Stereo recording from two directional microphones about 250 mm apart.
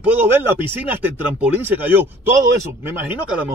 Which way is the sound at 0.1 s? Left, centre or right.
Centre.